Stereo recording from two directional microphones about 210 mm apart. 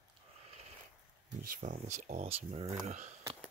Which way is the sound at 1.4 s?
40° right (ahead or behind).